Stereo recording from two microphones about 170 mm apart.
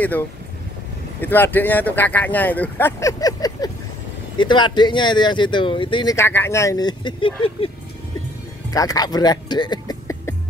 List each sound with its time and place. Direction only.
1.2 s speech: 10° left (ahead or behind); by 6.1 s 30° left (ahead or behind)
6.1 s speech: 15° left (ahead or behind); by 7.7 s 30° left (ahead or behind)
8.6 s speech: 20° left (ahead or behind)